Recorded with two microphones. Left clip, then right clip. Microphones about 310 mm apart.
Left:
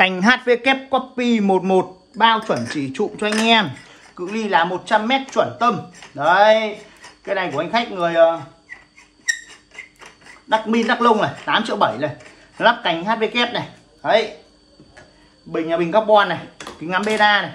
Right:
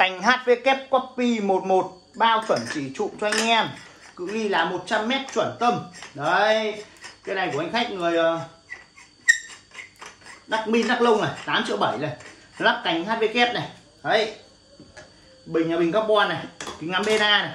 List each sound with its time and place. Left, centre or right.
0.0 s speech: left
4.4 s speech: centre
10.5 s speech: centre
15.5 s speech: centre